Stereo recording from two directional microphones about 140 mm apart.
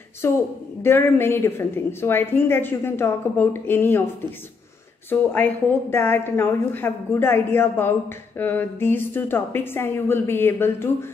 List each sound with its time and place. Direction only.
0.2 s a woman's voice: 15° left (ahead or behind)
5.1 s a woman's voice: 15° left (ahead or behind)